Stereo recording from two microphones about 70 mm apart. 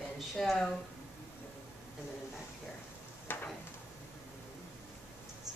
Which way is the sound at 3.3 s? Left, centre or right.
Left.